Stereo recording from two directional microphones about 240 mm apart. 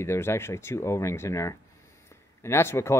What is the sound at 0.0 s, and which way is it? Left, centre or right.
Speech, centre.